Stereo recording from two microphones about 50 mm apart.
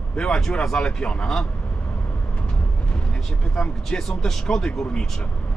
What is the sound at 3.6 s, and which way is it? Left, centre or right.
Speech, centre.